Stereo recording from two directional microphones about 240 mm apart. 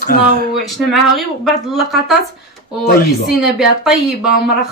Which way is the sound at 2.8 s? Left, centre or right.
Left.